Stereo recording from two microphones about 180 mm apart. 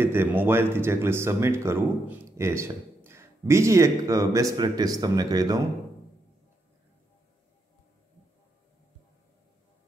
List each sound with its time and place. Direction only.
0.0 s speech: 10° right (ahead or behind)